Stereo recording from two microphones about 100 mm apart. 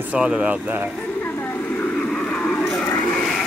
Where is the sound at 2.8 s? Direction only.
25° left (ahead or behind).